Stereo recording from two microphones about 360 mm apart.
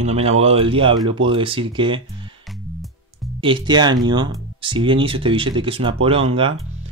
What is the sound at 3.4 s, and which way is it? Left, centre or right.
Speech, centre.